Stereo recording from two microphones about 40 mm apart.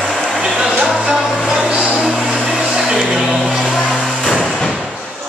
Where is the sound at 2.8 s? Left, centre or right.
Centre.